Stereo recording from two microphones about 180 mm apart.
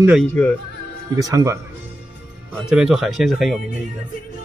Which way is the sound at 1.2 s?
15° right (ahead or behind).